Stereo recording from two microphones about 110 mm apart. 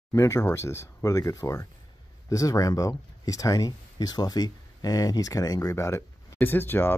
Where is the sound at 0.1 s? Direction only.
30° left (ahead or behind).